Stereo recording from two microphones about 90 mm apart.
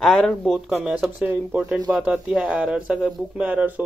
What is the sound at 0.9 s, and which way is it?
Speech, 15° right (ahead or behind).